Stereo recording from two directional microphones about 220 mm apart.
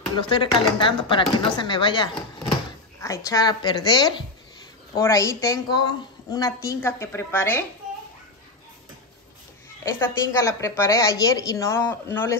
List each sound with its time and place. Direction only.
0.1 s speech: 20° left (ahead or behind)
9.9 s speech: 10° left (ahead or behind)